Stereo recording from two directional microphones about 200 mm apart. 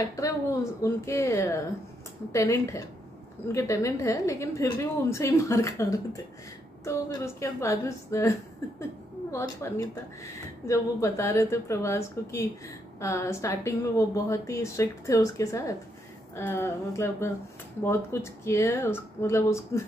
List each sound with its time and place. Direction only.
0.1 s a woman's voice: 15° left (ahead or behind)